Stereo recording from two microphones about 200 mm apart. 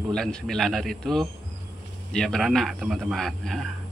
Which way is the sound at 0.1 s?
Centre (ahead or behind).